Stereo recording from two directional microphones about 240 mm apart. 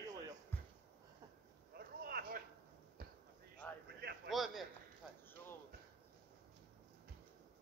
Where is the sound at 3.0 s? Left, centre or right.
Right.